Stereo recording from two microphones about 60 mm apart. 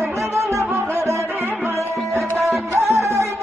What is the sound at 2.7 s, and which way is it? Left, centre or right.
Music, right.